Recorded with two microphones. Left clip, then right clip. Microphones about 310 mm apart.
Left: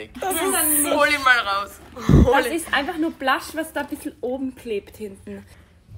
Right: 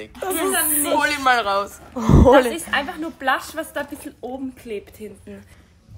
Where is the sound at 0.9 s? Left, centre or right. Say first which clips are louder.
Left 1 dB; centre; by 2.3 s right.